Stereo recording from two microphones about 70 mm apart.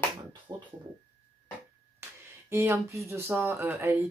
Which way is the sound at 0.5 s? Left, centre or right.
Right.